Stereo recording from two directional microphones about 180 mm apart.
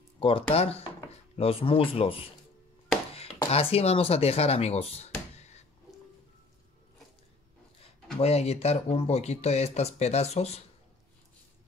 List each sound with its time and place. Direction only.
0.2 s speech: 30° left (ahead or behind)
8.2 s speech: 35° left (ahead or behind)